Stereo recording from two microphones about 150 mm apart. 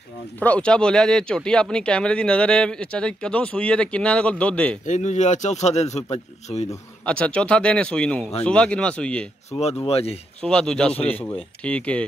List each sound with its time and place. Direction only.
0.4 s speech: 10° left (ahead or behind)
4.8 s speech: 55° left (ahead or behind)
7.1 s speech: 5° left (ahead or behind)
9.5 s speech: 40° left (ahead or behind)
10.4 s speech: 5° left (ahead or behind)